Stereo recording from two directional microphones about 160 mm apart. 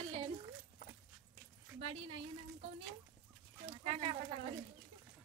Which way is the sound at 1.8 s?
40° right (ahead or behind).